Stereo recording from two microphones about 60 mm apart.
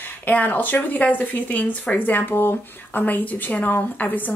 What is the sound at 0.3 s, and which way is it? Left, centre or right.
Speech, left.